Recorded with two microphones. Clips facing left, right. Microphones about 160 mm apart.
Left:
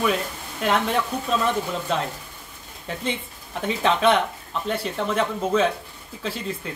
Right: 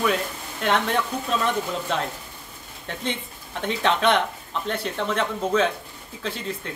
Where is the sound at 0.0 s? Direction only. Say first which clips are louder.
Even; centre (ahead or behind).